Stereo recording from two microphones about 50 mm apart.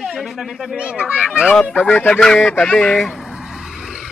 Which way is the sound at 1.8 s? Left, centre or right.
Left.